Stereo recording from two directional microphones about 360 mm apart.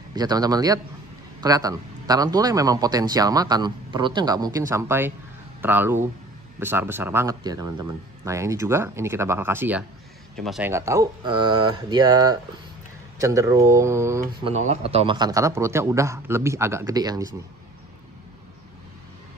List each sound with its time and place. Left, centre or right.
0.1 s a man's voice: centre
14.5 s a man's voice: centre